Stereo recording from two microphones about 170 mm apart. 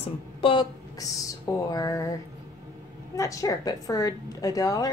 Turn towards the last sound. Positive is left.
turn(degrees=20)  # may be behind; listen again after turning